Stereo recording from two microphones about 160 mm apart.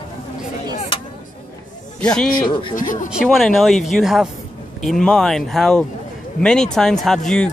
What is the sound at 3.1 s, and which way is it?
Speech, centre (ahead or behind).